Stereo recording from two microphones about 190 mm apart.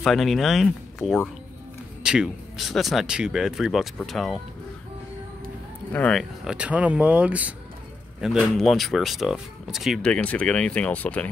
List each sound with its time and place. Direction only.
0.0 s speech: centre (ahead or behind)
5.9 s speech: 5° left (ahead or behind)